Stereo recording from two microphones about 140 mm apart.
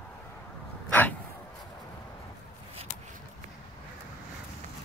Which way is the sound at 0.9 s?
10° left (ahead or behind).